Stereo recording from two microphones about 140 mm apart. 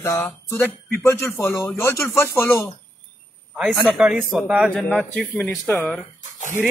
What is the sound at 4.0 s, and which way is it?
Speech, 5° right (ahead or behind).